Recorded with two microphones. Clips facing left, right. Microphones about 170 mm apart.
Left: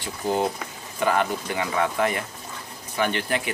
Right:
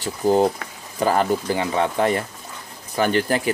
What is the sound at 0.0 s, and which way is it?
Speech, 35° right (ahead or behind).